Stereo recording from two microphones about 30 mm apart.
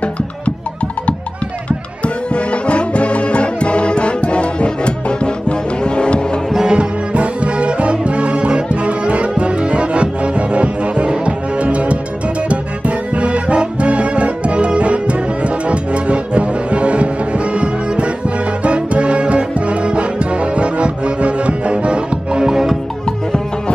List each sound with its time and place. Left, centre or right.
2.3 s music: left
6.6 s music: right
22.4 s music: centre